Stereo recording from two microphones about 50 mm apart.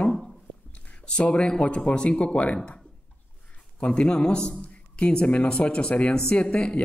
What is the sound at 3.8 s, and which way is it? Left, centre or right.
A man's voice, centre.